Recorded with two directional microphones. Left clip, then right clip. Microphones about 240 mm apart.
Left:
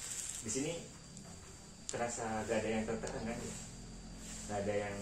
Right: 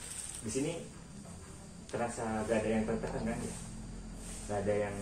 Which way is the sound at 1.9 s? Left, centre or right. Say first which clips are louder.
Right 3 dB; left.